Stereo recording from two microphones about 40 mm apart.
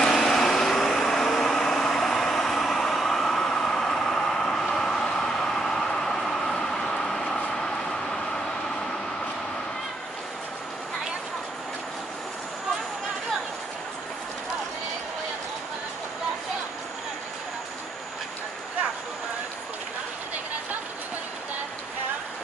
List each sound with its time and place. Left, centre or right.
0.0 s vehicle: centre